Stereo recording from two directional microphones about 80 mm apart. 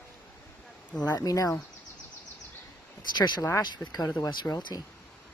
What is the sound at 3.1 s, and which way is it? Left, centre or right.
Speech, left.